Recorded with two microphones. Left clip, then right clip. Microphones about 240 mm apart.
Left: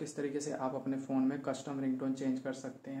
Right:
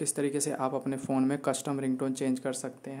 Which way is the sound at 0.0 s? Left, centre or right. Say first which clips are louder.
Right 7 dB; right.